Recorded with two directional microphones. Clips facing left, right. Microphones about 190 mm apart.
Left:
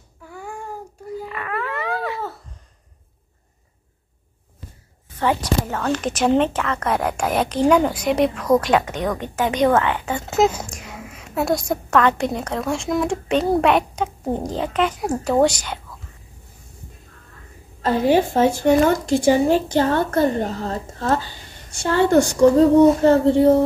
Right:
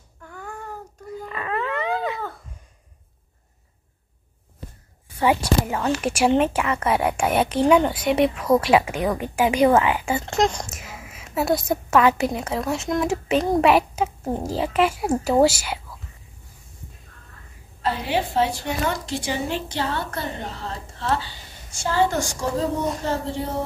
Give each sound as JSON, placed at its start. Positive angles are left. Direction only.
{"t": 0.2, "sound": "babbling", "side_deg": 10}
{"t": 1.3, "sound": "dog", "side_deg": -25}
{"t": 5.1, "sound": "a woman's voice", "side_deg": -10}
{"t": 10.2, "sound": "a child's voice", "side_deg": 5}
{"t": 17.8, "sound": "speech", "side_deg": 45}
{"t": 23.0, "sound": "a sound", "side_deg": 60}